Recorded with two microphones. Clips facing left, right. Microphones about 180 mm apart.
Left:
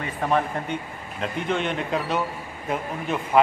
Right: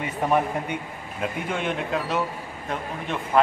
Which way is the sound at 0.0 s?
15° right (ahead or behind).